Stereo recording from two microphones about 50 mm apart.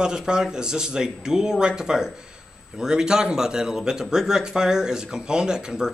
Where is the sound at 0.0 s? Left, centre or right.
Centre.